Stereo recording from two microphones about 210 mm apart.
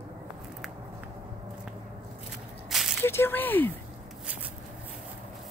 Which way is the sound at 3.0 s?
10° left (ahead or behind).